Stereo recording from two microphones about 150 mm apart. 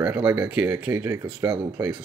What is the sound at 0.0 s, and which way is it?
Speech, 10° right (ahead or behind).